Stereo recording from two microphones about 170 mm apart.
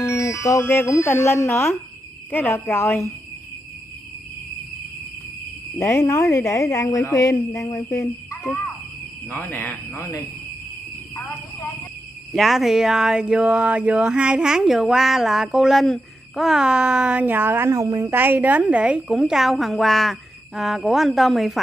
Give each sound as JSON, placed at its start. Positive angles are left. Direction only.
{"t": 0.0, "sound": "speech", "side_deg": 15}
{"t": 5.8, "sound": "speech", "side_deg": 15}
{"t": 12.4, "sound": "speech", "side_deg": 0}